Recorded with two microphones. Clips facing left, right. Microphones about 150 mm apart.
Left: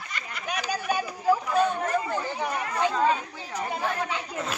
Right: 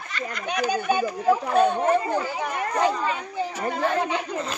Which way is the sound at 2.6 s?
40° right (ahead or behind).